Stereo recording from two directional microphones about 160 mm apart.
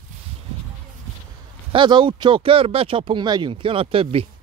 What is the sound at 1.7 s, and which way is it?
Speech, 30° right (ahead or behind).